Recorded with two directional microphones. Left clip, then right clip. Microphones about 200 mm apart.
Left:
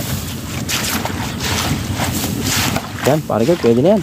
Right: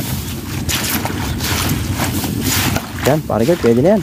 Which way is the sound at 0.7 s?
Centre (ahead or behind).